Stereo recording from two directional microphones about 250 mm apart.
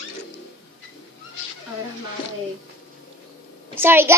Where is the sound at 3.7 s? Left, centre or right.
Centre.